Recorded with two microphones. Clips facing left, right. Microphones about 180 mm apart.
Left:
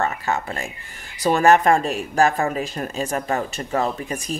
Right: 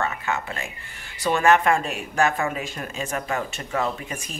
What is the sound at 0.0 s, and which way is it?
Speech, 35° left (ahead or behind).